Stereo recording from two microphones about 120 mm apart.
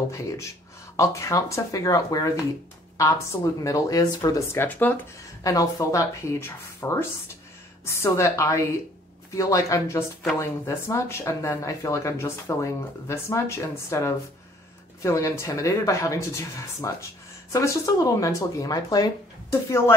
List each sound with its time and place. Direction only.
0.1 s speech: 25° left (ahead or behind)
4.6 s speech: 15° left (ahead or behind)
5.4 s speech: 30° left (ahead or behind)